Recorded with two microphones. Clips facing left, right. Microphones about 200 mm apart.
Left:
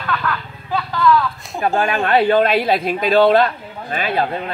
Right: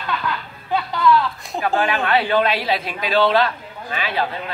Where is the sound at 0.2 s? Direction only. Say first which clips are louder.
Left 2 dB; 20° right (ahead or behind).